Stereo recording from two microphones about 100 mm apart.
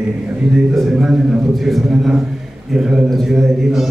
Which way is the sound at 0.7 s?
Centre (ahead or behind).